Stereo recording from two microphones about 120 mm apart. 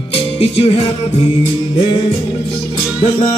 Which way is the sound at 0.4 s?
50° left (ahead or behind).